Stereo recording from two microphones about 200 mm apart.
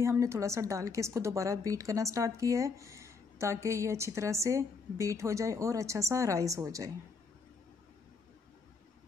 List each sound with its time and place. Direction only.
0.0 s a woman's voice: 15° right (ahead or behind)